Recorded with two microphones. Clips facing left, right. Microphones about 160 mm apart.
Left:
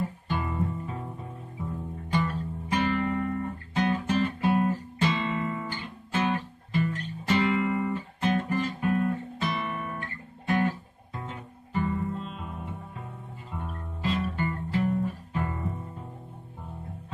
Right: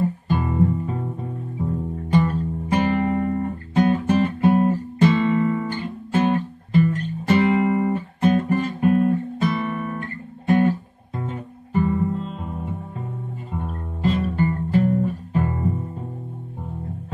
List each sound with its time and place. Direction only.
0.3 s music: 40° right (ahead or behind)
2.2 s music: 45° right (ahead or behind)
6.9 s guitar: 45° right (ahead or behind)
11.1 s music: 45° right (ahead or behind)
14.0 s music: 45° right (ahead or behind)